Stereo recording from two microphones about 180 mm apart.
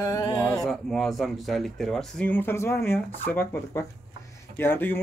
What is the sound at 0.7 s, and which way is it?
Speech, centre (ahead or behind).